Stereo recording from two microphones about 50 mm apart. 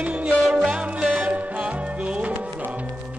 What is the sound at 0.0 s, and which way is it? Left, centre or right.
Music, right.